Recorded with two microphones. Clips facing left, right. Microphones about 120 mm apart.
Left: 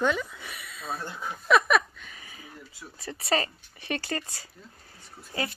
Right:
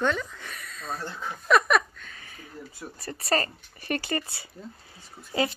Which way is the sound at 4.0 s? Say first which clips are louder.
Right 3 dB; 15° right (ahead or behind).